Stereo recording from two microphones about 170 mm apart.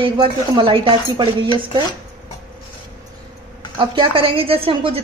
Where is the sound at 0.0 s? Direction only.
30° right (ahead or behind).